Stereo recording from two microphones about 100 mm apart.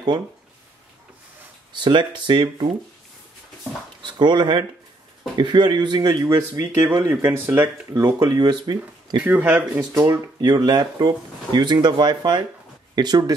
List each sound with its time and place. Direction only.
1.8 s speech: 50° right (ahead or behind)
4.0 s speech: 50° right (ahead or behind)
6.2 s speech: 30° right (ahead or behind)
8.2 s speech: 45° right (ahead or behind)
9.2 s speech: 20° right (ahead or behind)
9.8 s speech: 30° right (ahead or behind)
10.4 s speech: 45° right (ahead or behind)